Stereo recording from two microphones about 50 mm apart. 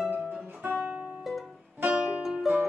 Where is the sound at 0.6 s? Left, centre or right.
Right.